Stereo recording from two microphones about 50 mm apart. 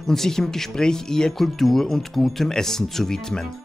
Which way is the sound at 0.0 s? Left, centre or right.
Centre.